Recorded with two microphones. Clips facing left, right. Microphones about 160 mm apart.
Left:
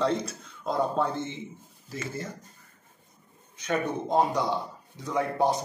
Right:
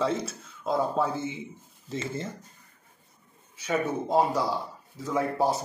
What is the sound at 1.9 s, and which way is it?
Speech, 25° right (ahead or behind).